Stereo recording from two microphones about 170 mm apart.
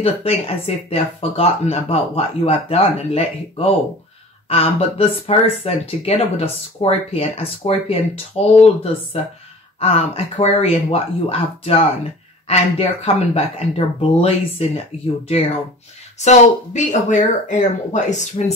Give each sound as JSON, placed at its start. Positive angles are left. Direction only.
{"t": 0.0, "sound": "speech", "side_deg": 35}
{"t": 16.2, "sound": "speech", "side_deg": 45}